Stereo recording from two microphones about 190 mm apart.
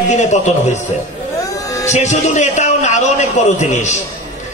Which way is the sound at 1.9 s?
40° left (ahead or behind).